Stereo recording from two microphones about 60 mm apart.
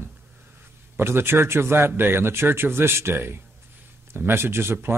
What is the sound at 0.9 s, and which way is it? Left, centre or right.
Speech, right.